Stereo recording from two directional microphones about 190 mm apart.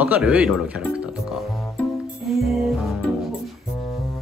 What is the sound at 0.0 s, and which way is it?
Speech, 5° right (ahead or behind).